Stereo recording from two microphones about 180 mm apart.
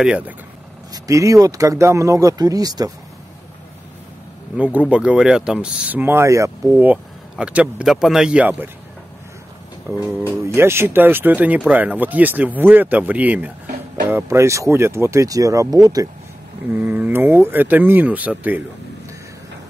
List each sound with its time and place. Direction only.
0.0 s speech: 5° right (ahead or behind)
0.9 s speech: 20° right (ahead or behind)
4.6 s speech: 5° right (ahead or behind)
9.8 s speech: 15° right (ahead or behind)
16.7 s speech: 10° right (ahead or behind)